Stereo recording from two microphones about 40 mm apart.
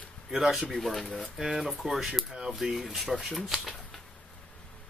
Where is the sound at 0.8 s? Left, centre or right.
Centre.